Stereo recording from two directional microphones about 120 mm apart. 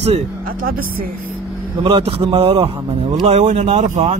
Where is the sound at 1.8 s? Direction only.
50° right (ahead or behind).